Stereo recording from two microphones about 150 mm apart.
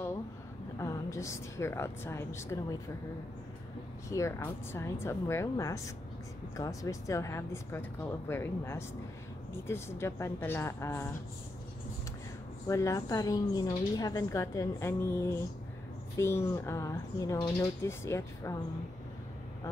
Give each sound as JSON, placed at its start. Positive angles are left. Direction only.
{"t": 0.7, "sound": "a woman's voice", "side_deg": 20}
{"t": 4.1, "sound": "a woman's voice", "side_deg": 20}
{"t": 12.6, "sound": "a woman's voice", "side_deg": 20}